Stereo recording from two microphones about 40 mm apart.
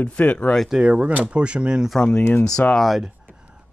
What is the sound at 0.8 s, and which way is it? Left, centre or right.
Speech, right.